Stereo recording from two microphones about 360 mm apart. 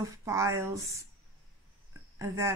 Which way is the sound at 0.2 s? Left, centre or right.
Centre.